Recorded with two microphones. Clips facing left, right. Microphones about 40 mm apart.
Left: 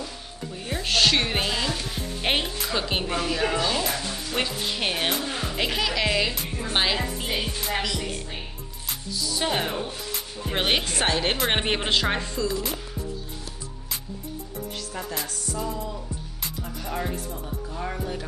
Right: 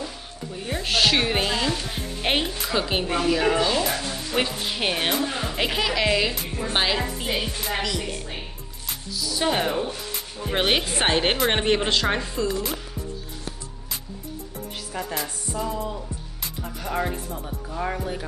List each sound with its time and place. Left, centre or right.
0.6 s a woman's voice: centre
8.8 s a sound: centre
10.1 s speech: centre
10.9 s music: right
11.3 s a woman's voice: centre
14.9 s chopping: centre
15.2 s music: right
17.5 s a woman's voice: centre